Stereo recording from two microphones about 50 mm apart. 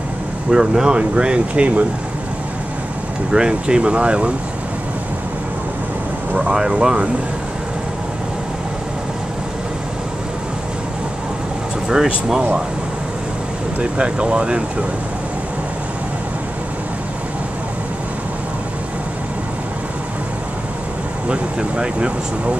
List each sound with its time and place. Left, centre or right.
0.5 s speech: centre
3.3 s speech: centre
6.3 s speech: centre
11.9 s speech: centre
13.7 s speech: right
21.3 s speech: right